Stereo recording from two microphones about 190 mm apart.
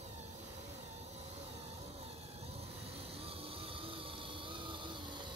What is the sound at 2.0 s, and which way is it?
Vehicle, 30° right (ahead or behind).